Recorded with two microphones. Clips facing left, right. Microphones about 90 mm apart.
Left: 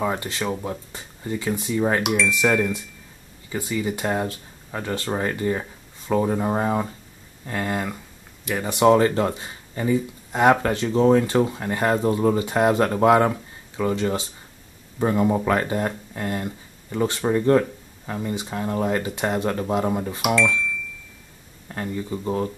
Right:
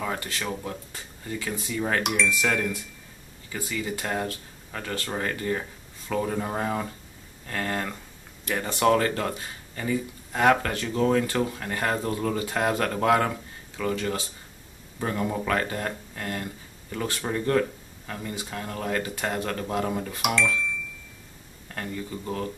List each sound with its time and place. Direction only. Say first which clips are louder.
0.0 s speech: left 6 dB; 20° left (ahead or behind)
21.6 s speech: left 5 dB; 20° left (ahead or behind)